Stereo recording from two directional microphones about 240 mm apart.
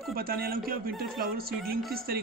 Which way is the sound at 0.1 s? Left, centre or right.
Right.